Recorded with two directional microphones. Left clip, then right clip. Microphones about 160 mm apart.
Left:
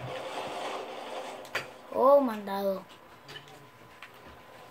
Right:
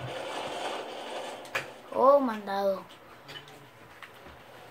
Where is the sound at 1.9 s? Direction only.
20° left (ahead or behind).